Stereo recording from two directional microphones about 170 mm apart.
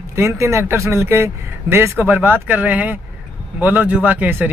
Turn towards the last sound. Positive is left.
turn(degrees=-10)  # may be behind; listen again after turning